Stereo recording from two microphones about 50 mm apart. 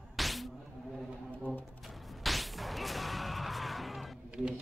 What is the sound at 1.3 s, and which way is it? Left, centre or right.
Music, left.